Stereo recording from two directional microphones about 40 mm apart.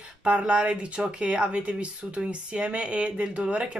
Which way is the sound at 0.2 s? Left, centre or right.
Right.